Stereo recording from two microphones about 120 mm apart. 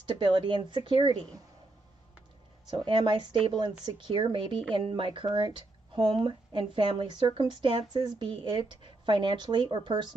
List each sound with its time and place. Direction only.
0.2 s a woman's voice: 40° right (ahead or behind)
2.8 s a woman's voice: 40° right (ahead or behind)